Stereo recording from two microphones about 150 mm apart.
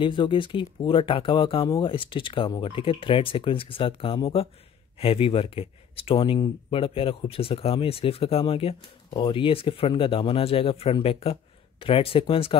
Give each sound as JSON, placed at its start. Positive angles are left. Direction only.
{"t": 0.0, "sound": "speech", "side_deg": 30}